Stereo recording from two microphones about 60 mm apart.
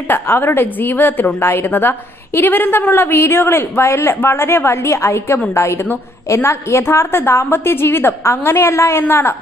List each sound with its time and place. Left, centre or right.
0.1 s a woman's voice: left